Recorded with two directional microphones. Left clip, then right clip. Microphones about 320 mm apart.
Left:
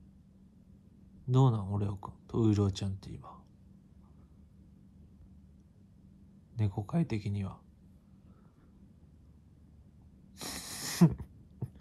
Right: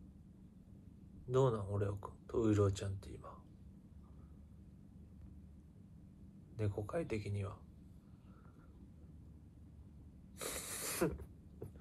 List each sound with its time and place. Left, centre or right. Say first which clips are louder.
1.3 s speech: left 2 dB; centre
6.5 s speech: left 2 dB; centre
10.3 s a sound: left 3 dB; centre